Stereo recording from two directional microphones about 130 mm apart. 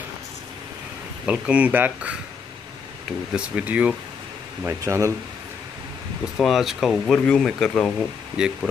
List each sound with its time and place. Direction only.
1.2 s speech: 10° right (ahead or behind)
3.3 s speech: 10° right (ahead or behind)
4.6 s speech: 20° right (ahead or behind)
6.3 s speech: centre (ahead or behind)